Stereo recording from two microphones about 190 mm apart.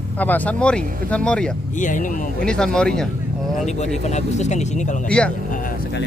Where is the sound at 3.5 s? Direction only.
35° left (ahead or behind).